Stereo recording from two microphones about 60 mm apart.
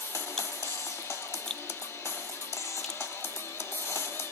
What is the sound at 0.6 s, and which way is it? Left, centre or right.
Music, left.